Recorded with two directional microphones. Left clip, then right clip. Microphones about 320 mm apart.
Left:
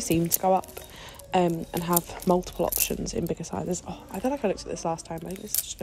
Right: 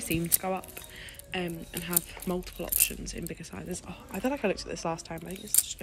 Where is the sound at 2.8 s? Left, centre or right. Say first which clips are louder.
Left 6 dB; left.